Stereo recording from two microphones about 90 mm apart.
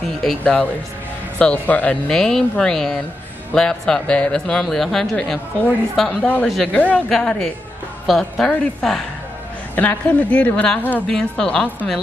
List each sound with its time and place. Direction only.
0.4 s a woman's voice: 10° left (ahead or behind)
9.8 s a woman's voice: 20° left (ahead or behind)
11.1 s a woman's voice: 5° left (ahead or behind)